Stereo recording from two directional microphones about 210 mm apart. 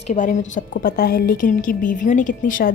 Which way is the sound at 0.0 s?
35° left (ahead or behind).